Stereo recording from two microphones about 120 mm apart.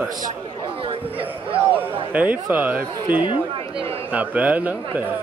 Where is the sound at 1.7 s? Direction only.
15° right (ahead or behind).